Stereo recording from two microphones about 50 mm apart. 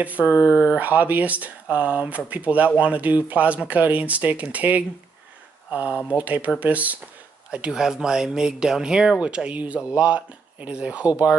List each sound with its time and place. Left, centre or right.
0.0 s speech: right
7.8 s speech: centre
9.5 s speech: right